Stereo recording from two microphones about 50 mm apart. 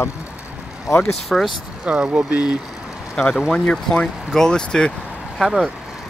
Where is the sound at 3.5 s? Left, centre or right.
Centre.